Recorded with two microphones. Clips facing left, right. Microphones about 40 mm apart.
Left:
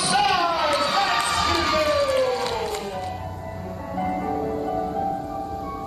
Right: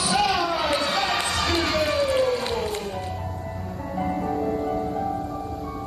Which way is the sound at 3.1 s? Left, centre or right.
Centre.